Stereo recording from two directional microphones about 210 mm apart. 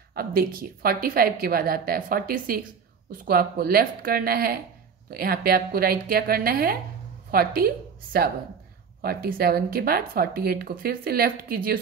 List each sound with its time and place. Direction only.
0.1 s a woman's voice: 45° right (ahead or behind)